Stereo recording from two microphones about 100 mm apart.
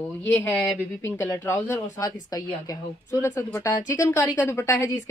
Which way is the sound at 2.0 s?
35° left (ahead or behind).